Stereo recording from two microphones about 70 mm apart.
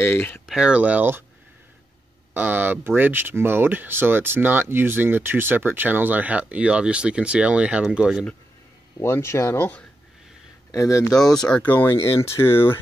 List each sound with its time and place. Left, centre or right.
0.0 s speech: left
0.5 s speech: centre
2.3 s speech: right
9.0 s speech: left
10.7 s speech: left
11.1 s speech: centre
11.6 s speech: left